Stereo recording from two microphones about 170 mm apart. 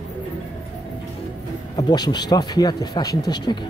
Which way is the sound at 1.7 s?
25° left (ahead or behind).